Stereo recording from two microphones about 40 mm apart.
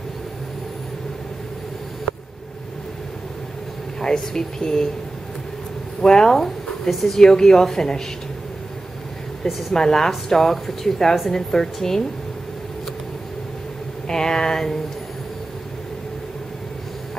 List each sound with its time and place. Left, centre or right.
4.0 s a woman's voice: centre
6.0 s speech: centre
6.9 s a woman's voice: centre
7.2 s a woman's voice: centre
9.5 s a woman's voice: centre
9.8 s a woman's voice: centre
14.0 s a woman's voice: centre